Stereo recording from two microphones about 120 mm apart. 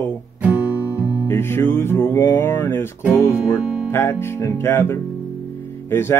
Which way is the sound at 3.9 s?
20° left (ahead or behind).